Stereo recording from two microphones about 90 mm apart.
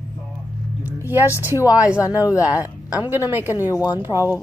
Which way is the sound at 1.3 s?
40° left (ahead or behind).